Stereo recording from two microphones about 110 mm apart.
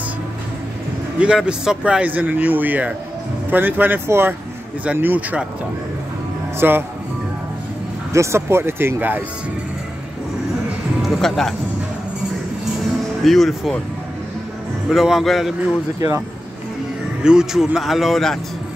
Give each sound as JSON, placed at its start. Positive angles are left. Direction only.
{"t": 1.2, "sound": "speech", "side_deg": -10}
{"t": 6.6, "sound": "speech", "side_deg": -15}
{"t": 8.1, "sound": "speech", "side_deg": -25}
{"t": 11.0, "sound": "speech", "side_deg": 0}
{"t": 13.2, "sound": "a man's voice", "side_deg": 0}
{"t": 14.9, "sound": "a man's voice", "side_deg": 0}
{"t": 17.2, "sound": "a man's voice", "side_deg": -5}